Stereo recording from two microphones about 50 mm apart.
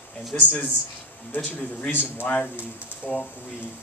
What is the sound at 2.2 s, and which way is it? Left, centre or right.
Speech, left.